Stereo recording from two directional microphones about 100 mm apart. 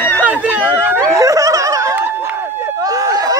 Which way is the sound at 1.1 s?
35° right (ahead or behind).